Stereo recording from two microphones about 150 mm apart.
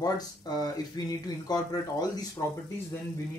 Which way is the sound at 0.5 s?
25° left (ahead or behind).